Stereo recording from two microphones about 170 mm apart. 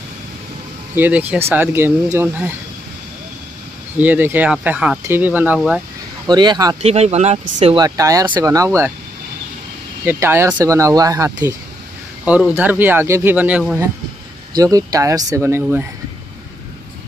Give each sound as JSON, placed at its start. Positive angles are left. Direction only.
{"t": 0.9, "sound": "speech", "side_deg": -10}
{"t": 4.0, "sound": "speech", "side_deg": -10}
{"t": 6.2, "sound": "speech", "side_deg": -25}
{"t": 6.8, "sound": "speech", "side_deg": -40}
{"t": 7.7, "sound": "speech", "side_deg": -20}
{"t": 10.0, "sound": "speech", "side_deg": -15}
{"t": 14.5, "sound": "speech", "side_deg": -20}